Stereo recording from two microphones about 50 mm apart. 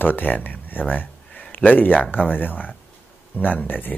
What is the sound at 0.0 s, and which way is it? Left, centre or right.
Speech, left.